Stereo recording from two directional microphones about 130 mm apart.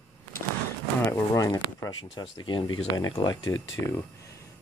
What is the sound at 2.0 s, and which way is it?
Speech, 40° left (ahead or behind).